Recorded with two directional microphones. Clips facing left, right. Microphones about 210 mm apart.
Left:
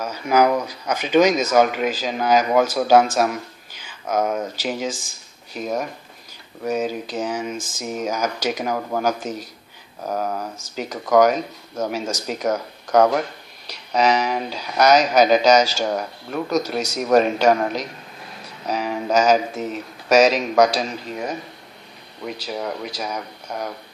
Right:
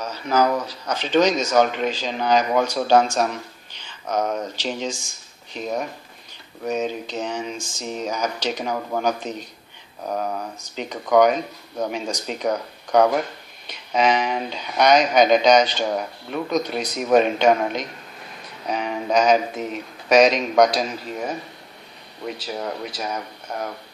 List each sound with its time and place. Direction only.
0.0 s speech: 10° left (ahead or behind)
7.5 s speech: 90° left
7.8 s speech: 5° left (ahead or behind)
22.4 s speech: 5° right (ahead or behind)